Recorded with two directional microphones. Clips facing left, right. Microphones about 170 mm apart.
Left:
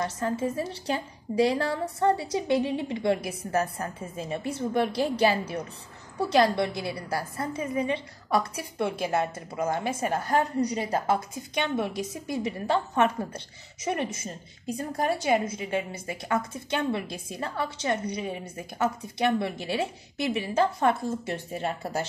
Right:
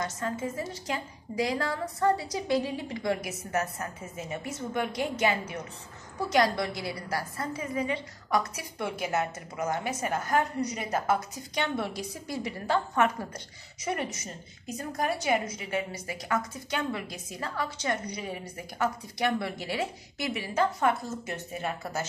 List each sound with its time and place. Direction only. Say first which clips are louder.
0.0 s a woman's voice: left 4 dB; 30° left (ahead or behind)